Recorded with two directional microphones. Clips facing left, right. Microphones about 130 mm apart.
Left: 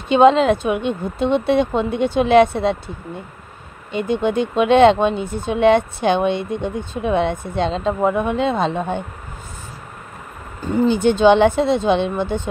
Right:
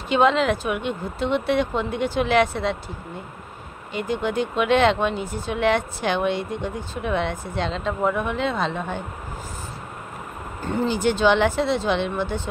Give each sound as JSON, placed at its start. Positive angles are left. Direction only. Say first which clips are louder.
{"t": 0.1, "sound": "speech", "louder": "left 7 dB", "side_deg": 25}
{"t": 3.9, "sound": "speech", "louder": "left 5 dB", "side_deg": 20}
{"t": 10.6, "sound": "speech", "louder": "left 6 dB", "side_deg": 10}